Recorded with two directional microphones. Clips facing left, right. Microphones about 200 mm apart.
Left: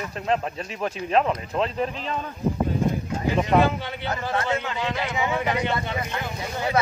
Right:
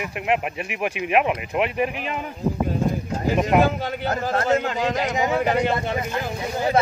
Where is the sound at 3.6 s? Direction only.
40° right (ahead or behind).